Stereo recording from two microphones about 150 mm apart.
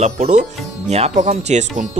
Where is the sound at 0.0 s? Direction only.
50° right (ahead or behind).